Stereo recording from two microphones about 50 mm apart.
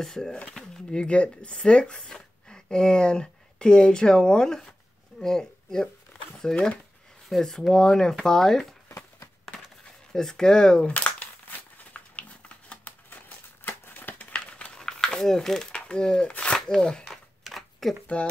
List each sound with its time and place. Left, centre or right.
0.0 s speech: centre
0.9 s speech: left
10.1 s speech: centre
11.1 s a sound: left
13.7 s crumpling: left
14.1 s crumpling: left
14.8 s a sound: centre
15.7 s speech: centre
16.5 s speech: centre
17.4 s a sound: centre